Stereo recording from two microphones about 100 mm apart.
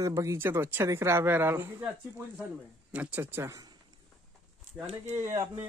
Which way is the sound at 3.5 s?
40° right (ahead or behind).